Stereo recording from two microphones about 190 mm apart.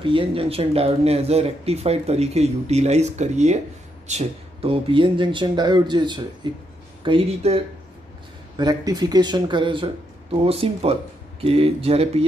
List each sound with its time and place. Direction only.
0.0 s speech: 25° right (ahead or behind)
8.5 s speech: 20° right (ahead or behind)